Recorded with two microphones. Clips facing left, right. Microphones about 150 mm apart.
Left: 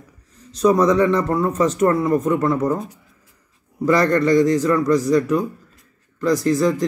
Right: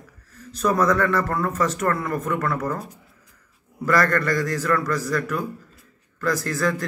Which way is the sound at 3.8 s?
20° left (ahead or behind).